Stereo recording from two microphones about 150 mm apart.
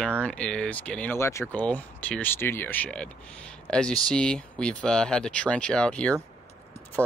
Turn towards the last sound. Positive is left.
turn(degrees=-15)  # may be behind; listen again after turning